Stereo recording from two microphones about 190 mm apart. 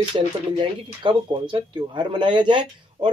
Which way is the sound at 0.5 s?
25° right (ahead or behind).